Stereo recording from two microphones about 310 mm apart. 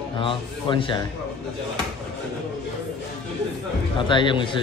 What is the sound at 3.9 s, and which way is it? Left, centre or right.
Speech, centre.